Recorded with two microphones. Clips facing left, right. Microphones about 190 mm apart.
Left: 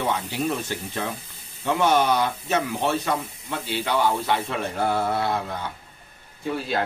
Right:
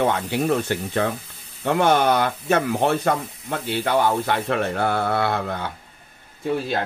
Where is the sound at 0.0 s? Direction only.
65° right (ahead or behind).